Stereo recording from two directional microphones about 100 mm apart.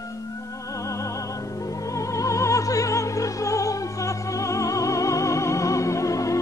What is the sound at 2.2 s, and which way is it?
Opera, 30° left (ahead or behind).